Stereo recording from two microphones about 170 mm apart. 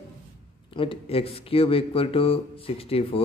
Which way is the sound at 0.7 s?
35° left (ahead or behind).